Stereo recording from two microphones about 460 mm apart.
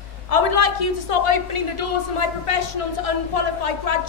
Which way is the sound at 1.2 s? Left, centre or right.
Left.